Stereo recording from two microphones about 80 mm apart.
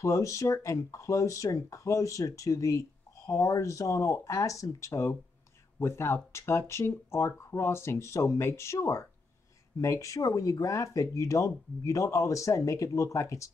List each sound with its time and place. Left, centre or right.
0.0 s speech: left